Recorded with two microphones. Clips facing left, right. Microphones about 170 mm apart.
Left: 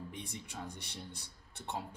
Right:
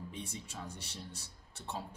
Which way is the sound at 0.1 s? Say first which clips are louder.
Right 1 dB; 15° left (ahead or behind).